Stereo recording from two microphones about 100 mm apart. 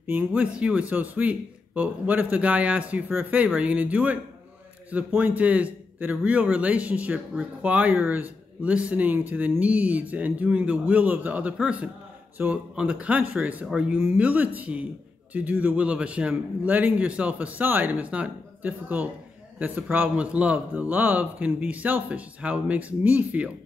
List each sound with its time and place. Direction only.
0.0 s a man's voice: 20° right (ahead or behind)